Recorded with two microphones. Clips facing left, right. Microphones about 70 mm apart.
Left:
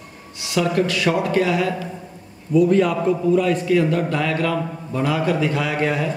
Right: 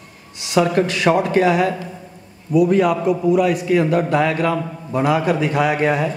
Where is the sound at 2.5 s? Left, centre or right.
Centre.